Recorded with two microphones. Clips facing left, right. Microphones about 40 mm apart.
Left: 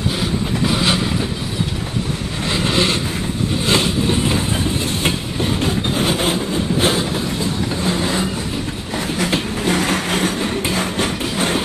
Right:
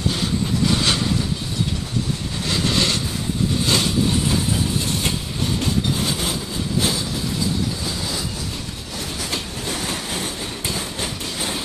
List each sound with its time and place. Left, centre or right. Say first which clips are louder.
0.7 s vehicle: left 3 dB; centre
2.5 s vehicle: left 3 dB; left
5.0 s train: left 4 dB; left